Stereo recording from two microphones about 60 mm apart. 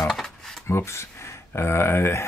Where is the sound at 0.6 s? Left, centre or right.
Left.